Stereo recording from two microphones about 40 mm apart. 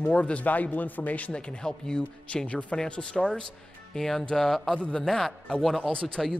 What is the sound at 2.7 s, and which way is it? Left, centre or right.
Speech, left.